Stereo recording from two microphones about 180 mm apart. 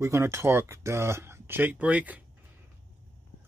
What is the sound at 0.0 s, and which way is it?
Speech, 15° right (ahead or behind).